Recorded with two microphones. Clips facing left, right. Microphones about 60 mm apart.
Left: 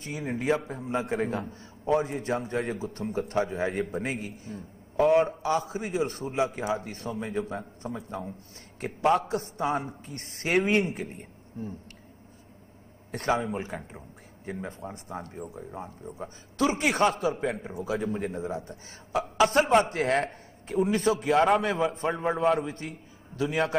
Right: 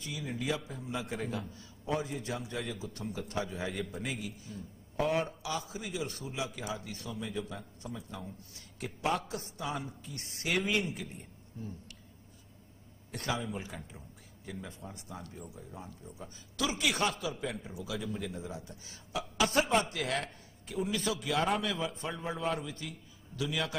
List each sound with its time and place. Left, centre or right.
0.0 s a man's voice: left
13.1 s a man's voice: left
22.4 s a man's voice: left
22.7 s a man's voice: left